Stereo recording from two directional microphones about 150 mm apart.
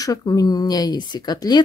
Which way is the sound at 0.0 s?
25° left (ahead or behind).